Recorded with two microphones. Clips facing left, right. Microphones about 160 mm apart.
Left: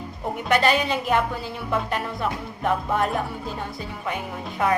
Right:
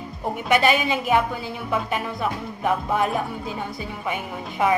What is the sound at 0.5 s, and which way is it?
Speech, 5° right (ahead or behind).